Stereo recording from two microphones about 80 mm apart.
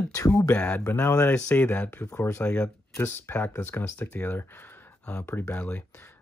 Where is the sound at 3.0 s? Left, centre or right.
Left.